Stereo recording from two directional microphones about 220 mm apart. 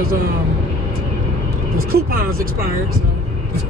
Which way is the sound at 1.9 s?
40° right (ahead or behind).